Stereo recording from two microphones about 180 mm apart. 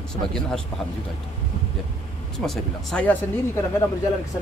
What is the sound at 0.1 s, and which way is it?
Speech, 5° left (ahead or behind).